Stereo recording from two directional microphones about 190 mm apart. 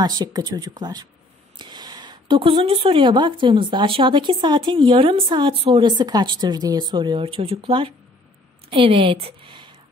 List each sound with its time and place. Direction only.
0.0 s a woman's voice: 20° right (ahead or behind)